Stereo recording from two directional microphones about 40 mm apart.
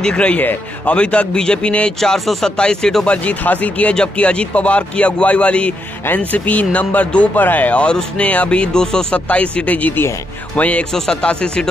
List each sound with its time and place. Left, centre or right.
0.0 s a man's voice: left
1.9 s speech: centre
2.1 s speech: centre
2.5 s speech: centre
3.4 s speech: left
3.9 s speech: left
7.8 s a man's voice: left
11.2 s a man's voice: left